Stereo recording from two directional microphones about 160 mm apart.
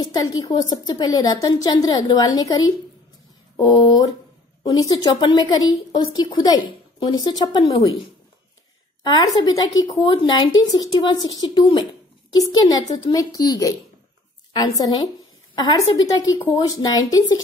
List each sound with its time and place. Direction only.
0.0 s speech: 25° left (ahead or behind)
9.0 s speech: 25° left (ahead or behind)